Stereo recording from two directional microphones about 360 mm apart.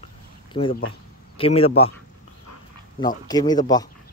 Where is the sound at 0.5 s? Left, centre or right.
Centre.